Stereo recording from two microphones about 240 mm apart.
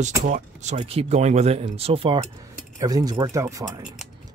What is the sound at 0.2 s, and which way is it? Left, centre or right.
Speech, right.